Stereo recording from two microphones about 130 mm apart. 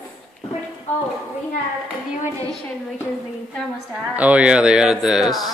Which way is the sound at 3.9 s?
10° right (ahead or behind).